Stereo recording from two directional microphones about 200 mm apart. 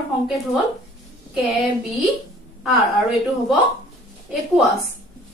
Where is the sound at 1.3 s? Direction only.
Centre (ahead or behind).